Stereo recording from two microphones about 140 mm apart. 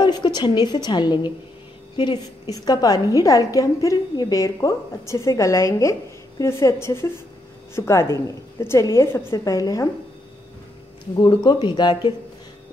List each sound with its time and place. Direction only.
0.0 s a woman's voice: 30° left (ahead or behind)
11.1 s speech: 35° left (ahead or behind)